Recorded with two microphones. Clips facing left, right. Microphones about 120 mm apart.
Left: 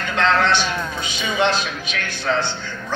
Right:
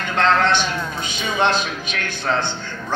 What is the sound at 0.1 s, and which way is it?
A man's voice, 50° right (ahead or behind).